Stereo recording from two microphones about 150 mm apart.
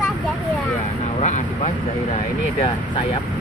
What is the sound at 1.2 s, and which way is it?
Speech, 50° left (ahead or behind).